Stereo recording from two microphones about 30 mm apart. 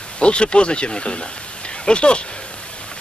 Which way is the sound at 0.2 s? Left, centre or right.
Left.